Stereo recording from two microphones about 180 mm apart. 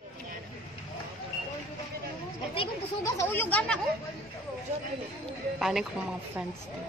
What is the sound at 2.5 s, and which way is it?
Speech, 30° left (ahead or behind).